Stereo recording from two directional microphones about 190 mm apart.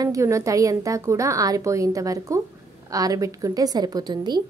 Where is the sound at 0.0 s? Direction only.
15° right (ahead or behind).